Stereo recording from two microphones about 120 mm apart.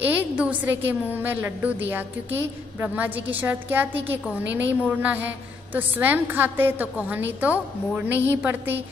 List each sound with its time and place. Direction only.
0.0 s a woman's voice: 15° right (ahead or behind)